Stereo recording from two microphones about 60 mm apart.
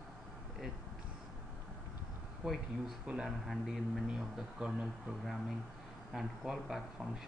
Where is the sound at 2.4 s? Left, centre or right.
Right.